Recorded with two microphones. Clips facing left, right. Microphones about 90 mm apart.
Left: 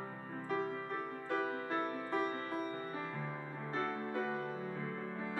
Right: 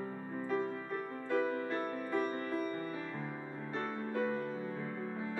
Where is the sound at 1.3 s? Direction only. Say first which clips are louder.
Right 4 dB; 20° left (ahead or behind).